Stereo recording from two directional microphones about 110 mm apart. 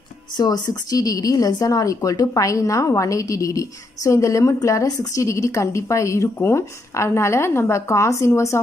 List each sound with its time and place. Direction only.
0.4 s speech: 40° left (ahead or behind)